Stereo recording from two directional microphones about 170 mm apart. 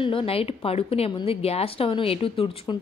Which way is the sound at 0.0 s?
30° left (ahead or behind).